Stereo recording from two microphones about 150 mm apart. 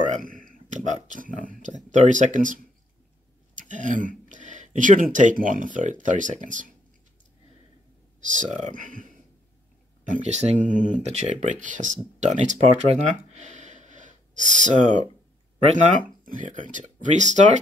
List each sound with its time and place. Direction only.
0.1 s a sound: 65° right (ahead or behind)
1.4 s speech: 60° right (ahead or behind)
8.2 s speech: 55° right (ahead or behind)
10.6 s speech: 60° left (ahead or behind)
11.0 s speech: 45° right (ahead or behind)